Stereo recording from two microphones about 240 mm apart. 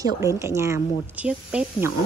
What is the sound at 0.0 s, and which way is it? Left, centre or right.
A woman's voice, centre.